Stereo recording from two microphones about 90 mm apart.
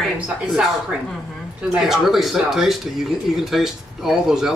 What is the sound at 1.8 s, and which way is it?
A man's voice, centre (ahead or behind).